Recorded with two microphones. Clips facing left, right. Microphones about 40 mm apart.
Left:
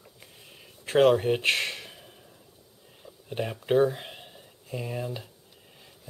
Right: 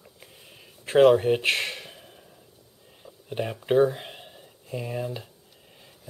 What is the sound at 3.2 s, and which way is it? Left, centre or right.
Speech, centre.